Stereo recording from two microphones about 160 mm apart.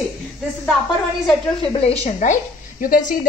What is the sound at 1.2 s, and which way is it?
A woman's voice, 35° left (ahead or behind).